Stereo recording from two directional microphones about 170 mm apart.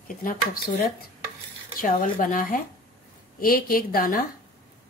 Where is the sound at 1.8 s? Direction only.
55° left (ahead or behind).